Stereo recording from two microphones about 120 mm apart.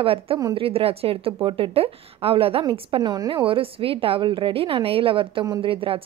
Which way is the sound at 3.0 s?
35° right (ahead or behind).